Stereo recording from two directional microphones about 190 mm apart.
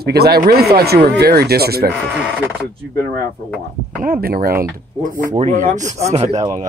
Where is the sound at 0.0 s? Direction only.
55° right (ahead or behind).